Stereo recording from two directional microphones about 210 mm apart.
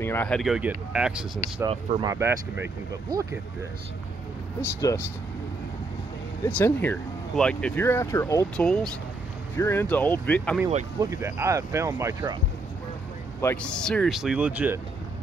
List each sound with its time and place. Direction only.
0.0 s speech: 10° left (ahead or behind)
1.7 s speech: 25° right (ahead or behind)
4.6 s speech: 15° left (ahead or behind)
6.4 s speech: 10° left (ahead or behind)
11.0 s speech: 15° right (ahead or behind)
13.4 s speech: 10° left (ahead or behind); by 14.8 s 5° right (ahead or behind)